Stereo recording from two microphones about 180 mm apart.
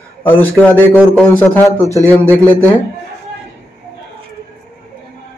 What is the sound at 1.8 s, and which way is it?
Speech, 15° right (ahead or behind).